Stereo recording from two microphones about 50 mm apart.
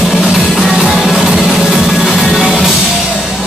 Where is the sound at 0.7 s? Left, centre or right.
Centre.